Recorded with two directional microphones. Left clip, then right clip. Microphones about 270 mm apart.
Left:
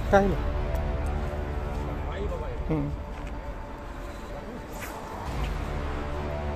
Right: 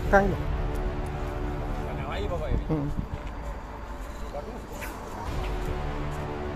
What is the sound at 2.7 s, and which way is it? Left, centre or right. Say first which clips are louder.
Speech: left 1 dB; centre.